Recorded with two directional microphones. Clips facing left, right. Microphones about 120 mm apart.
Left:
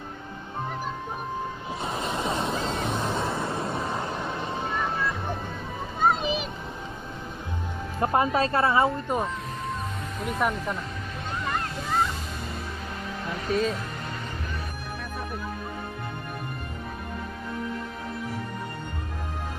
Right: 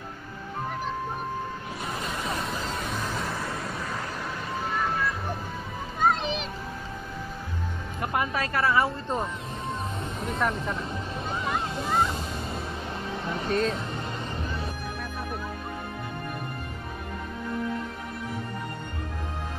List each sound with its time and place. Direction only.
1.8 s music: 25° left (ahead or behind)
2.3 s a sound: 25° left (ahead or behind)
3.0 s music: 25° left (ahead or behind)
4.6 s music: centre (ahead or behind)
5.9 s a sound: 5° left (ahead or behind)
8.0 s speech: 30° left (ahead or behind)
10.2 s speech: centre (ahead or behind)
11.4 s waves: 5° right (ahead or behind)
13.5 s speech: centre (ahead or behind)